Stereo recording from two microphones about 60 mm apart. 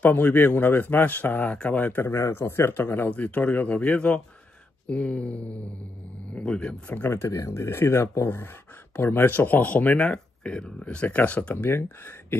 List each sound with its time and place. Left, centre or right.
0.0 s a man's voice: left
2.0 s speech: left
3.1 s a man's voice: left
7.1 s speech: left
8.9 s speech: left
9.9 s speech: centre
11.5 s speech: left